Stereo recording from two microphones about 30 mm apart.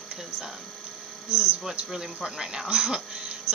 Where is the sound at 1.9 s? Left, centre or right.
Right.